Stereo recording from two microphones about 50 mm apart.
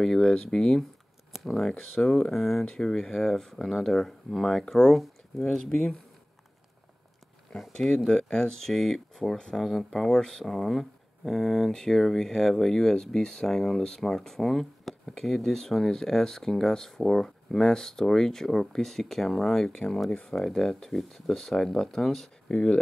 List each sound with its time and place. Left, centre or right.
0.0 s speech: centre
7.5 s speech: centre
8.1 s speech: centre
22.5 s speech: left